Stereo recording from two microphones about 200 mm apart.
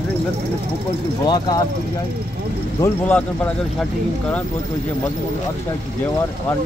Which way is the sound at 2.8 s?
10° left (ahead or behind).